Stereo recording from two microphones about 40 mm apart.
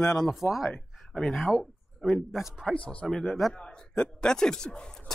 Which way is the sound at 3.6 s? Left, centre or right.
Centre.